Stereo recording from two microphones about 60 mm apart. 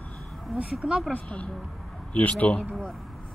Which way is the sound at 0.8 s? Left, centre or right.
Centre.